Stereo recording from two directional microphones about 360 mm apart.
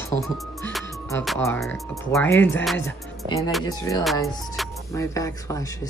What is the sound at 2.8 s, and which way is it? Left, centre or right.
Speech, centre.